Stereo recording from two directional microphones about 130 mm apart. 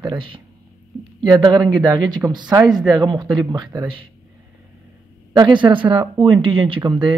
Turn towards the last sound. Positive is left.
turn(degrees=-40)  # may be behind; listen again after turning